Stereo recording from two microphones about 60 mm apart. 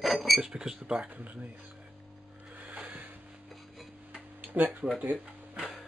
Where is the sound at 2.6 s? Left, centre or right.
Right.